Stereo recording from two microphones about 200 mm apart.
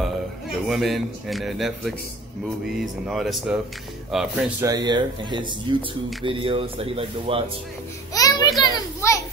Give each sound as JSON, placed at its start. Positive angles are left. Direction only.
{"t": 0.0, "sound": "a man's voice", "side_deg": 0}
{"t": 4.6, "sound": "speech", "side_deg": -20}
{"t": 8.1, "sound": "children playing", "side_deg": 15}